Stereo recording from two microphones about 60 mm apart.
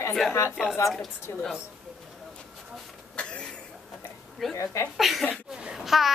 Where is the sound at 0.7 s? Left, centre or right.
Left.